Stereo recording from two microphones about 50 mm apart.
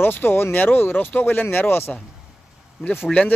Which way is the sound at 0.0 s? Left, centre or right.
Left.